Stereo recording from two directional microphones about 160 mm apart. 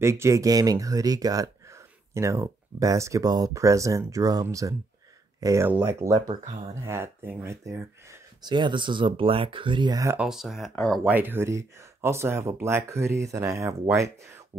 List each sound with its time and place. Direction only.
0.0 s speech: 15° right (ahead or behind)
8.4 s speech: 30° right (ahead or behind)
10.1 s speech: 5° right (ahead or behind)
11.1 s speech: 15° right (ahead or behind)